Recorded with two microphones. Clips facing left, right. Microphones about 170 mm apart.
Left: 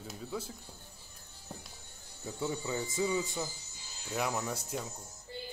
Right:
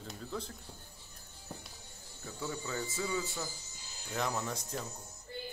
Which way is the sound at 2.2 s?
20° left (ahead or behind).